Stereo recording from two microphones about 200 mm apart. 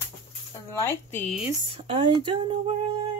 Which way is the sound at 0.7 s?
10° left (ahead or behind).